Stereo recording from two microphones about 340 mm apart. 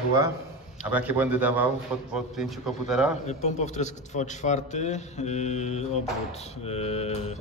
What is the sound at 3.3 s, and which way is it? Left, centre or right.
A man's voice, centre.